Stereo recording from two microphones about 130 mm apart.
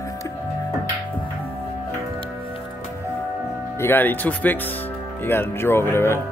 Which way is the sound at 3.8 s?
15° left (ahead or behind).